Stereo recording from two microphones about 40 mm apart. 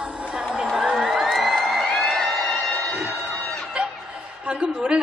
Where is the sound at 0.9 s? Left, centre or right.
Centre.